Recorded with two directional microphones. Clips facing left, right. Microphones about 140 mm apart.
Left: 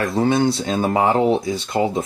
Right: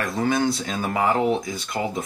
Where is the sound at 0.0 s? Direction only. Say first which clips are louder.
Left 5 dB; 30° left (ahead or behind).